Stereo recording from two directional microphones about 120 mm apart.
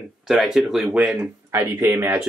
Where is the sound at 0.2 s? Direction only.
5° right (ahead or behind).